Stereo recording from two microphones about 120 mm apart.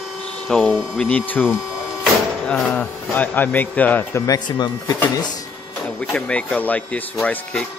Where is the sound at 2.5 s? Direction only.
10° left (ahead or behind).